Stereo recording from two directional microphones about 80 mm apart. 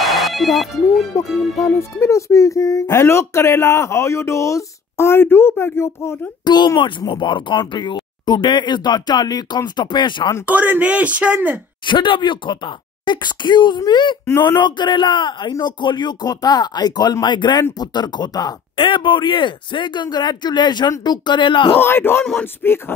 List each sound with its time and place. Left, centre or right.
0.0 s ringtone: centre
1.1 s speech: left
6.4 s speech: left
7.2 s speech: left
9.8 s speech: left
10.4 s speech: right
11.8 s speech: left
18.8 s speech: left
21.7 s speech: left